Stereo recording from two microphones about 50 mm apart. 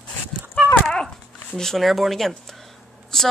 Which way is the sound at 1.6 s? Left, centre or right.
Centre.